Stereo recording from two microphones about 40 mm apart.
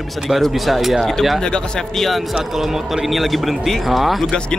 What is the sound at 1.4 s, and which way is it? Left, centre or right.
Speech, centre.